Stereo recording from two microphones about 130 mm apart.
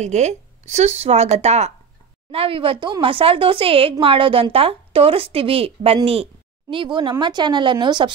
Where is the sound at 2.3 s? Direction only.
45° right (ahead or behind).